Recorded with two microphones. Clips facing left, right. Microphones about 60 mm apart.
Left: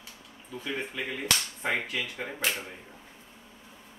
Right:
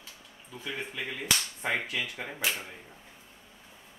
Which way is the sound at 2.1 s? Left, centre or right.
Centre.